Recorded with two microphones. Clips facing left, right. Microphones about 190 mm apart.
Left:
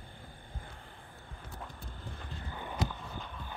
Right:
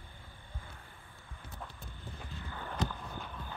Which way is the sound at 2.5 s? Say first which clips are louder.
Left 1 dB; 10° left (ahead or behind).